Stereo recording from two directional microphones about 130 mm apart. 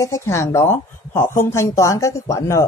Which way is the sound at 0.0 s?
25° left (ahead or behind).